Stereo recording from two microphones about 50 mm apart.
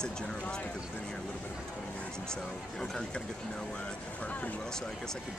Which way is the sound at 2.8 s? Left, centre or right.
Centre.